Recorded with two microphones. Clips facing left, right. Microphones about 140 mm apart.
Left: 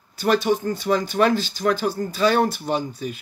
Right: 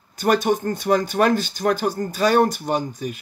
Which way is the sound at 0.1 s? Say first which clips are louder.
Right 1 dB; 45° right (ahead or behind).